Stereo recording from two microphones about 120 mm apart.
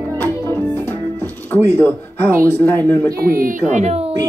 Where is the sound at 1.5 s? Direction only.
20° left (ahead or behind).